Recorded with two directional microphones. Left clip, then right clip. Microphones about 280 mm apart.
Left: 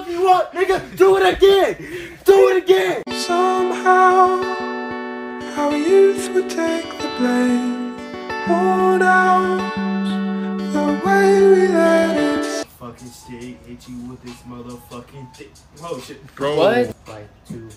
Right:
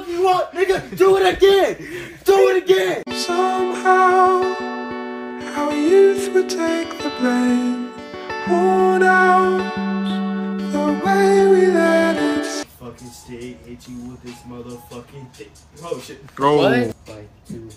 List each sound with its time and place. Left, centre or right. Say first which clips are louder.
0.2 s a man's voice: left 2 dB; centre
3.1 s music: left 2 dB; centre
16.5 s speech: left 2 dB; left